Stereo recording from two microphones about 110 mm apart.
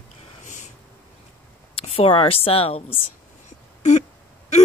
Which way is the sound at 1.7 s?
60° left (ahead or behind).